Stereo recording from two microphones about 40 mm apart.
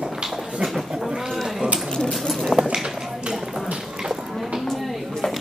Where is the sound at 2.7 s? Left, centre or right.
Centre.